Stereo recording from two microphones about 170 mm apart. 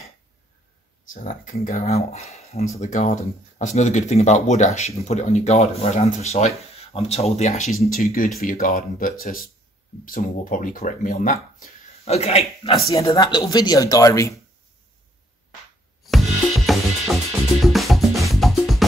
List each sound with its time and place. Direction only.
1.0 s speech: 50° left (ahead or behind)
7.9 s speech: 55° left (ahead or behind)
12.0 s speech: 35° left (ahead or behind)
13.1 s speech: 25° left (ahead or behind)
16.6 s music: centre (ahead or behind)